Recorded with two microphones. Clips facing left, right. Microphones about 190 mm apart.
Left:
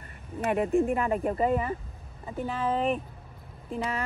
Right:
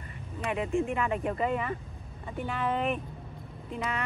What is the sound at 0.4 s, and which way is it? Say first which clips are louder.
Speech: left 5 dB; 50° left (ahead or behind).